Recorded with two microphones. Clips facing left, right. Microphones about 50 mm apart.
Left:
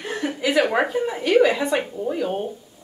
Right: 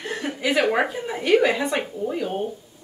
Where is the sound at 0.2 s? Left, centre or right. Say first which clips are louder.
Left 1 dB; centre.